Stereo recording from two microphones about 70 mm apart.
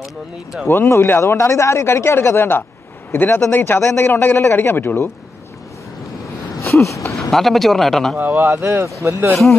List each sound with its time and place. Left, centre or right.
0.0 s speech: centre
0.7 s a man's voice: left
6.6 s a sound: left
7.2 s speech: centre
8.2 s speech: right